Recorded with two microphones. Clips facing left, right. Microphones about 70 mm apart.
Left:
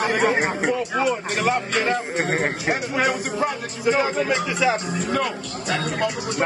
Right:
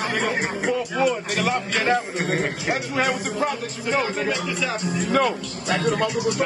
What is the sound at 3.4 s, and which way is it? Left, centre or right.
Speech, centre.